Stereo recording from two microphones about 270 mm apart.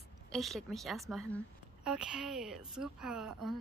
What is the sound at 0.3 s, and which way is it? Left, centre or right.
A woman's voice, centre.